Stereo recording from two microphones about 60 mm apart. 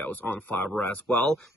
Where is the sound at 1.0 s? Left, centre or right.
Centre.